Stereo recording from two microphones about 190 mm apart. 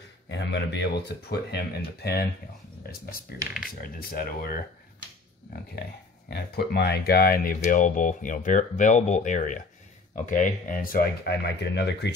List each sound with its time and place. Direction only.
0.3 s a man's voice: 65° left (ahead or behind); by 4.6 s 50° left (ahead or behind)
6.3 s speech: 55° left (ahead or behind)